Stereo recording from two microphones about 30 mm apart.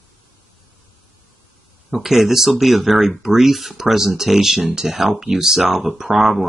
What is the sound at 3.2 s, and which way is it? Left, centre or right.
Speech, centre.